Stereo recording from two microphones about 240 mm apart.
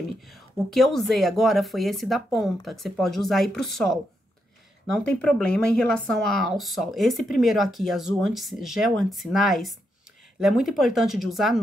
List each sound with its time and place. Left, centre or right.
0.3 s speech: centre